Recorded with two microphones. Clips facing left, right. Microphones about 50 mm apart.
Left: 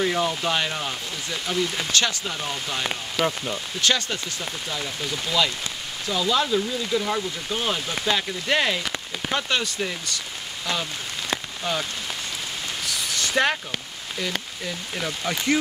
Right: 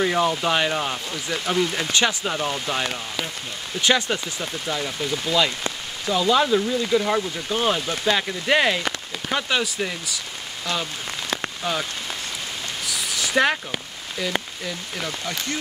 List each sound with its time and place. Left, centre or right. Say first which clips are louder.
0.0 s speech: right 3 dB; centre
3.2 s speech: left 9 dB; centre
3.8 s speech: right 4 dB; centre
12.8 s a sound: right 1 dB; centre